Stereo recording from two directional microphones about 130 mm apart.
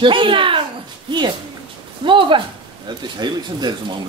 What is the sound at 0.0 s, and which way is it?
Speech, 40° right (ahead or behind).